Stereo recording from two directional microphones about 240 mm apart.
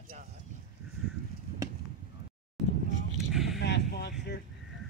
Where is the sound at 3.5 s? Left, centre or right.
Left.